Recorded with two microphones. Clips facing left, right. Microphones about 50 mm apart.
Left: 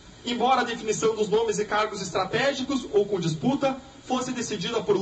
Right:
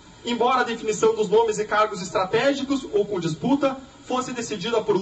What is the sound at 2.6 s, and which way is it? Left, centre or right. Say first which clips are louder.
A man's voice: right 1 dB; centre.